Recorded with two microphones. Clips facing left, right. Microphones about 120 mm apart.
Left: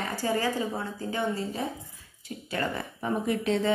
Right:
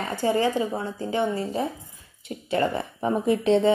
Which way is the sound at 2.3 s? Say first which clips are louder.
Right 7 dB; 25° right (ahead or behind).